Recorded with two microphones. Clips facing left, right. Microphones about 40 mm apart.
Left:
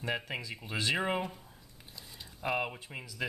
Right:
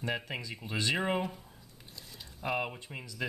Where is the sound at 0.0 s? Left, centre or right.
Centre.